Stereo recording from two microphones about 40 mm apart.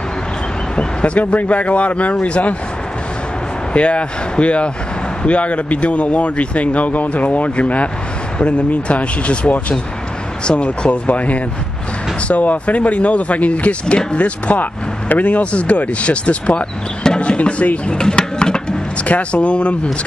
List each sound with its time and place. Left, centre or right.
0.7 s speech: left
3.7 s speech: left
14.6 s speech: left
17.9 s music: left
19.0 s speech: left